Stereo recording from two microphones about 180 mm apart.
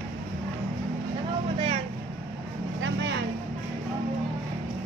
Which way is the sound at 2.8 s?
85° right.